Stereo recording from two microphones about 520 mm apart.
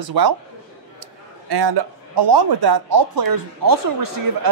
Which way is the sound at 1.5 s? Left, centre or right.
Right.